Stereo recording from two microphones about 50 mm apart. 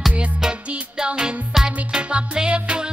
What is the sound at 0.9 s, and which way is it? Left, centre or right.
Music, centre.